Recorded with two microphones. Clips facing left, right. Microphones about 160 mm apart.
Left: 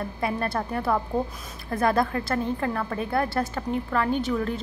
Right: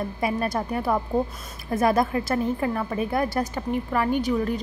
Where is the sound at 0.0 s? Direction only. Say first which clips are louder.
Right 2 dB; 15° right (ahead or behind).